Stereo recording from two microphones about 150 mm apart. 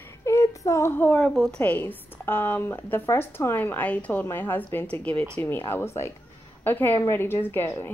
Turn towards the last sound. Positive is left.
turn(degrees=15)  # may be behind; listen again after turning